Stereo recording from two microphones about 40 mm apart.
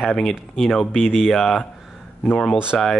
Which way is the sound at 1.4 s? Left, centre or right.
Centre.